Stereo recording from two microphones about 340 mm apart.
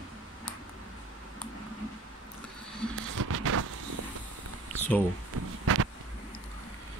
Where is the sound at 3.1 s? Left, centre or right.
Right.